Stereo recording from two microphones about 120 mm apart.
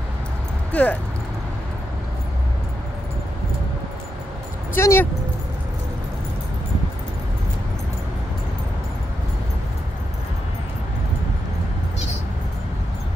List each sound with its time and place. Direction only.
0.7 s speech: 10° left (ahead or behind)
4.7 s speech: 20° left (ahead or behind)